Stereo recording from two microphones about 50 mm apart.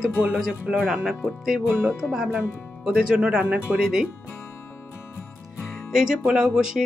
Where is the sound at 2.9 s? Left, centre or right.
Centre.